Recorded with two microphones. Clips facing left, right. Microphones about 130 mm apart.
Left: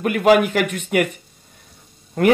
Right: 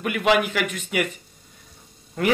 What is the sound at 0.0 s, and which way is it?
Speech, 45° left (ahead or behind).